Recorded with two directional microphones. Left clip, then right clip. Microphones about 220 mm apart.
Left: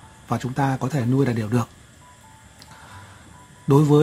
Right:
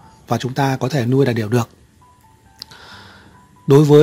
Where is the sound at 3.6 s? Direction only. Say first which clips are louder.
Right 7 dB; 35° right (ahead or behind).